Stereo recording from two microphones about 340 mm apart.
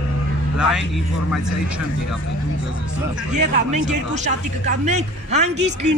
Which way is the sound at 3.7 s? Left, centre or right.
Right.